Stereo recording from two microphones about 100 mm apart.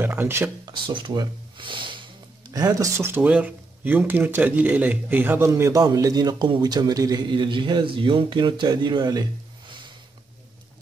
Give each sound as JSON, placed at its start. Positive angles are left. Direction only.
{"t": 0.0, "sound": "a sound", "side_deg": -20}
{"t": 0.7, "sound": "speech", "side_deg": -50}
{"t": 2.5, "sound": "a man's voice", "side_deg": -35}
{"t": 3.1, "sound": "speech", "side_deg": -15}
{"t": 5.5, "sound": "a man's voice", "side_deg": -35}